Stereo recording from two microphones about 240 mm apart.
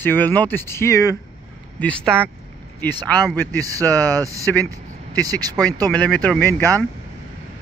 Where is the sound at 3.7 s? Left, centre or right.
Centre.